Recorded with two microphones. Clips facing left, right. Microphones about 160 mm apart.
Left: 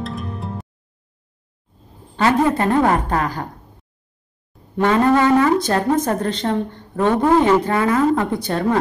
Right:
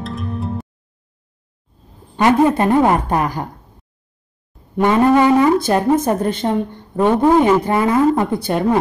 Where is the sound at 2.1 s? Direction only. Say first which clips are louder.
Right 3 dB; 15° right (ahead or behind).